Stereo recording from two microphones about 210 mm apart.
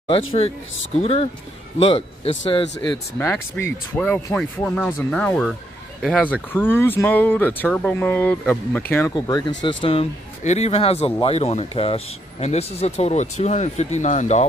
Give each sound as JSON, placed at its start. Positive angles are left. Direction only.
{"t": 0.9, "sound": "speech", "side_deg": 30}
{"t": 3.2, "sound": "speech", "side_deg": 10}